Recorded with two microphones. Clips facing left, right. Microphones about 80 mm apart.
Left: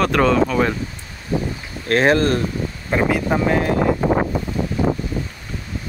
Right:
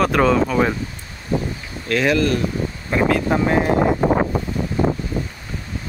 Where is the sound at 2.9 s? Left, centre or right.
Left.